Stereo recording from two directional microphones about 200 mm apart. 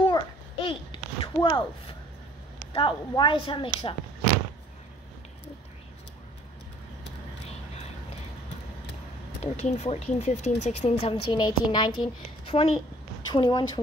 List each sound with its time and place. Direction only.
0.0 s a sound: 25° left (ahead or behind)
2.7 s a woman's voice: 25° left (ahead or behind)
9.4 s a woman's voice: 30° left (ahead or behind)